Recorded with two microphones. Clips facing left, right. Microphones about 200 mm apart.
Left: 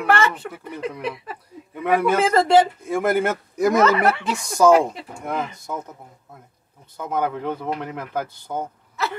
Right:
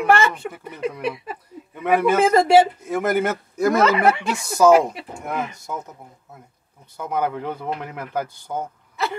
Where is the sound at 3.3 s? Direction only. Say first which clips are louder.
Even; 15° left (ahead or behind).